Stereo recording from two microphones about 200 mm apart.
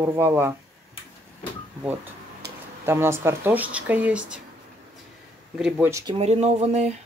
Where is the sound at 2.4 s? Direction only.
55° right (ahead or behind).